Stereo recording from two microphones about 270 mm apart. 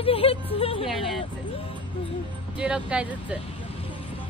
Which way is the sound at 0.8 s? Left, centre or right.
Centre.